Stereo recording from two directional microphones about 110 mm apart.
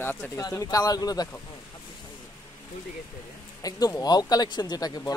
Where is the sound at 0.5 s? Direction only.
35° left (ahead or behind).